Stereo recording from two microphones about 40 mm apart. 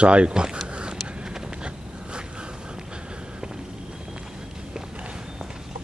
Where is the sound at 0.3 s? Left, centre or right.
Centre.